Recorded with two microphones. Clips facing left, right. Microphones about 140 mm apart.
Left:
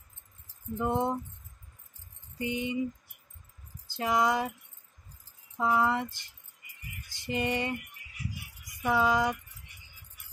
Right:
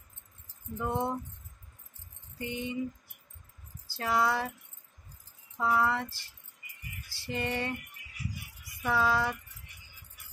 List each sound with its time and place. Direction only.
0.7 s speech: 20° left (ahead or behind)
2.3 s speech: 15° left (ahead or behind)
3.8 s speech: 20° left (ahead or behind)
5.6 s speech: 15° left (ahead or behind)
8.8 s speech: 15° left (ahead or behind)